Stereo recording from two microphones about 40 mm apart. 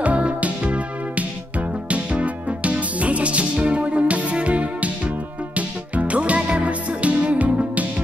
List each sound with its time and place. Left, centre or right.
0.0 s music: right